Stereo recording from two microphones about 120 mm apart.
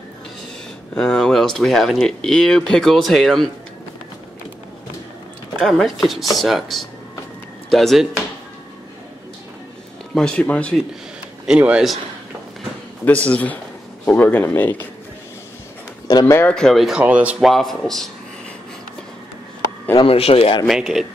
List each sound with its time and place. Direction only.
0.9 s speech: 5° left (ahead or behind)
5.6 s speech: 5° left (ahead or behind)
10.1 s speech: 10° left (ahead or behind)
11.4 s speech: 10° right (ahead or behind)
13.0 s speech: 10° left (ahead or behind)
16.1 s speech: 30° left (ahead or behind)
16.3 s speech: 10° left (ahead or behind)
17.0 s speech: 10° right (ahead or behind)
17.5 s speech: centre (ahead or behind)
20.0 s speech: 55° left (ahead or behind)
20.6 s speech: centre (ahead or behind)